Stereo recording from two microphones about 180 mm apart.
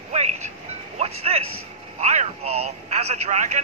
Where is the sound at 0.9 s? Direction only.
35° right (ahead or behind).